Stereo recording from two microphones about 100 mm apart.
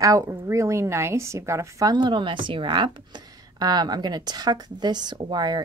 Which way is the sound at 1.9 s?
50° right (ahead or behind).